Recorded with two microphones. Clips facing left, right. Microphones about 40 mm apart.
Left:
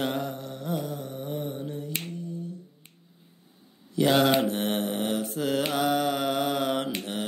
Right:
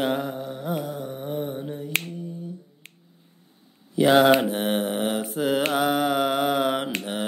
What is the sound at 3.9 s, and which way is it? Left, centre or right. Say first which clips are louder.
Speech: right 5 dB; centre.